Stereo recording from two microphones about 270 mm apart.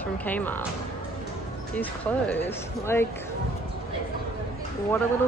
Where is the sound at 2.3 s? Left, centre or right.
Centre.